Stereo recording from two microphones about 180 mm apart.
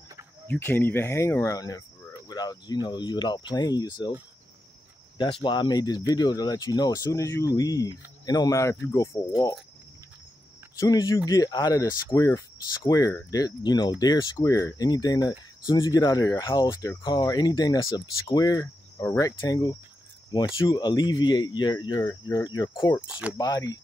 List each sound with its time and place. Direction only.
0.5 s speech: 10° left (ahead or behind)
5.1 s speech: 25° left (ahead or behind)
10.8 s speech: 20° left (ahead or behind)